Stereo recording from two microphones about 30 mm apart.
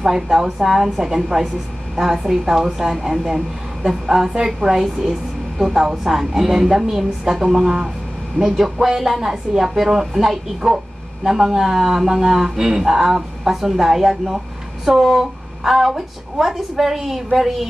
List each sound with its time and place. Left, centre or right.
0.0 s speech: centre
8.4 s speech: centre